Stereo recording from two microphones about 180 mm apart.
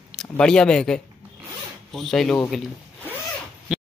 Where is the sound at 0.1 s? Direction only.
Centre (ahead or behind).